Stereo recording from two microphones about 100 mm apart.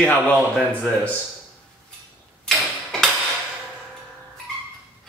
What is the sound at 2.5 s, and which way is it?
Tick-tock, centre (ahead or behind).